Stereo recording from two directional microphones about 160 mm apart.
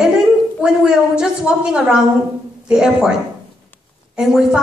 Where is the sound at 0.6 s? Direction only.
5° right (ahead or behind).